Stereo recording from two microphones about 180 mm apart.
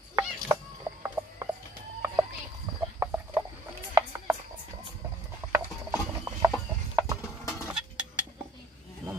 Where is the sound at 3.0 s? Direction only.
10° right (ahead or behind).